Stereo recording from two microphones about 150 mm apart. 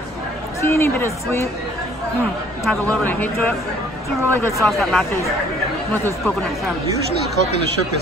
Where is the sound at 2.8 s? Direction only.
10° left (ahead or behind).